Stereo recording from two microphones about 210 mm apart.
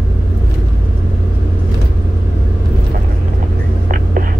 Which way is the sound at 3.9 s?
40° right (ahead or behind).